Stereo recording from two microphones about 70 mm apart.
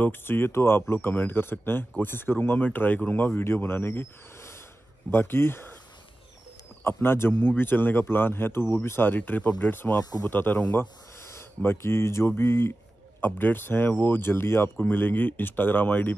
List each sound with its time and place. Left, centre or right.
0.0 s speech: left
6.8 s speech: left